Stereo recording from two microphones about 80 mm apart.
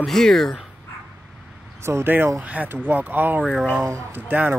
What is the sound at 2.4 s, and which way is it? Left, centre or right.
Speech, centre.